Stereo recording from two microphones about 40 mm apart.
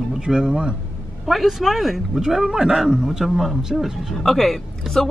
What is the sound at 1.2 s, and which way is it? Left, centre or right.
Speech, centre.